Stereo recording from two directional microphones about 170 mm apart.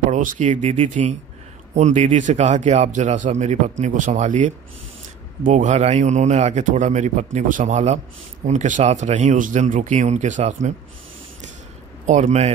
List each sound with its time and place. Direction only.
0.1 s speech: 50° right (ahead or behind)
12.1 s a man's voice: 45° right (ahead or behind)